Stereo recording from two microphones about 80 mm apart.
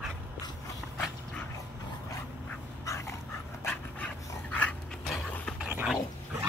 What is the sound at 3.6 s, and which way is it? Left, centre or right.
Dog, left.